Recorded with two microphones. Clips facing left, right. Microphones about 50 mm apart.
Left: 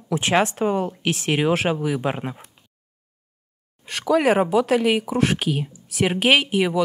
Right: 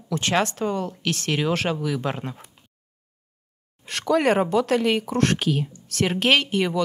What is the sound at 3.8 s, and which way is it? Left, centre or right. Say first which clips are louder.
Speech: left 2 dB; centre.